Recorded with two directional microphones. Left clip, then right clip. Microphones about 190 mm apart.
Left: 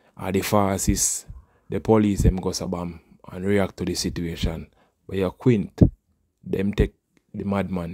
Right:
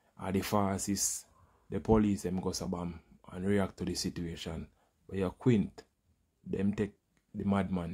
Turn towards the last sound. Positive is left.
turn(degrees=35)  # may be behind; listen again after turning